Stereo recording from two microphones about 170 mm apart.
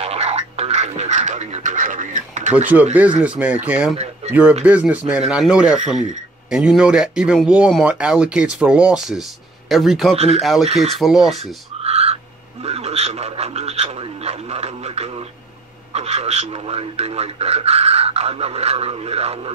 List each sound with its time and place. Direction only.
0.0 s music: 40° right (ahead or behind)
2.7 s speech: 10° right (ahead or behind)
3.9 s speech: 35° right (ahead or behind)
4.3 s speech: 5° right (ahead or behind)
10.1 s a man's voice: 40° right (ahead or behind)
10.4 s speech: centre (ahead or behind)
10.7 s a man's voice: 40° right (ahead or behind)
11.0 s speech: centre (ahead or behind)
11.8 s owl: 35° right (ahead or behind)
12.6 s a man's voice: 40° right (ahead or behind)